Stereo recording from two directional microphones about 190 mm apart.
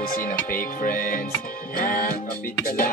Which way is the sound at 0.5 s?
45° left (ahead or behind).